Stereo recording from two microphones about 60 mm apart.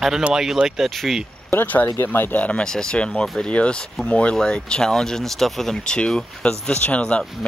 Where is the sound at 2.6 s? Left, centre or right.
Centre.